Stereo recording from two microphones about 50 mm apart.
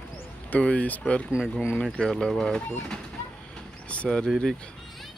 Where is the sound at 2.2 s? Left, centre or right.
Centre.